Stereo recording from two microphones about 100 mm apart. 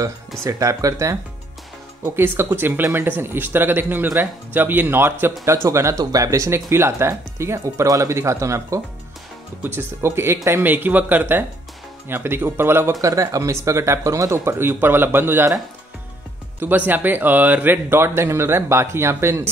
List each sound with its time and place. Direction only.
0.0 s speech: 35° right (ahead or behind)
16.5 s speech: 20° right (ahead or behind)